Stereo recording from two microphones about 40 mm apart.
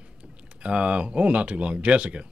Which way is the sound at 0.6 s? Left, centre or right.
Right.